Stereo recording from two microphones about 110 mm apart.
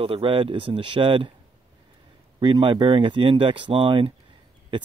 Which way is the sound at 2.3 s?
45° right (ahead or behind).